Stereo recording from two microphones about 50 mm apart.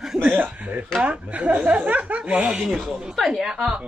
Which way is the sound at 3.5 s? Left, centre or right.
Centre.